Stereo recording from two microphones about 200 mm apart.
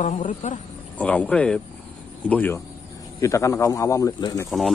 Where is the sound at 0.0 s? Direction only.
40° left (ahead or behind).